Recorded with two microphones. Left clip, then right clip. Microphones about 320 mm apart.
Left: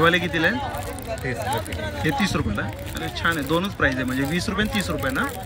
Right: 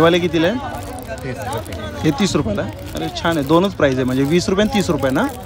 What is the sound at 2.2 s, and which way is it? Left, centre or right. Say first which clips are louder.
Speech: right 5 dB; centre.